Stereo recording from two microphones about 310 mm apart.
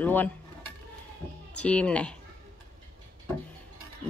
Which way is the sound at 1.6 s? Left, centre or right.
Centre.